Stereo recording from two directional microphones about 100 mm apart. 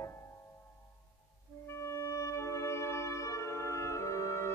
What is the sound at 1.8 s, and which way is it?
Music, 30° left (ahead or behind).